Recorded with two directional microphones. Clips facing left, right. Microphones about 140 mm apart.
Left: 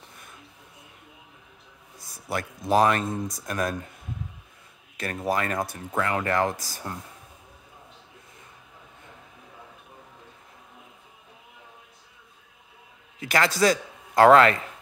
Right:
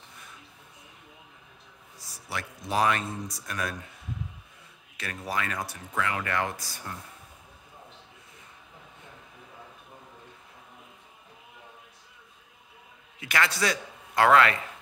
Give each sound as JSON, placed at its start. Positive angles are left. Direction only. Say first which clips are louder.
{"t": 2.0, "sound": "speech", "louder": "left 6 dB", "side_deg": 50}
{"t": 4.9, "sound": "speech", "louder": "left 6 dB", "side_deg": 45}
{"t": 13.2, "sound": "a man's voice", "louder": "left 5 dB", "side_deg": 40}